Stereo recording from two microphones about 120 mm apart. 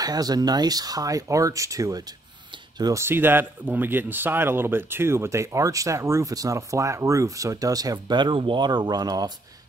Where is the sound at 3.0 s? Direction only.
20° right (ahead or behind).